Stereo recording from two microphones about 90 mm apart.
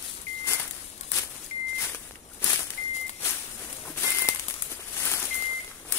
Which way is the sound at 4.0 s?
25° left (ahead or behind).